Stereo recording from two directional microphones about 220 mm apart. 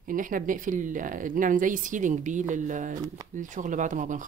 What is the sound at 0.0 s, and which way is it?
Speech, 40° right (ahead or behind).